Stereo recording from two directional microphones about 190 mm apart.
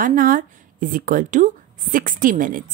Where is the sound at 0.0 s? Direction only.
45° right (ahead or behind).